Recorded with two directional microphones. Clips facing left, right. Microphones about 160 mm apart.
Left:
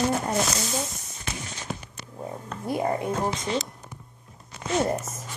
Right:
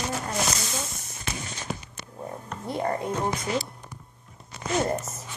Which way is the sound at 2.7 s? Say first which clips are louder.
Left 2 dB; 15° left (ahead or behind).